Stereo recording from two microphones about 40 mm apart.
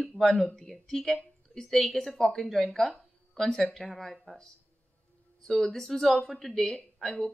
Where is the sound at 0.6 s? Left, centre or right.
Centre.